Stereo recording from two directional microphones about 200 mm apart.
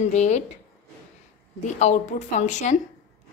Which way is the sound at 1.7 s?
35° left (ahead or behind).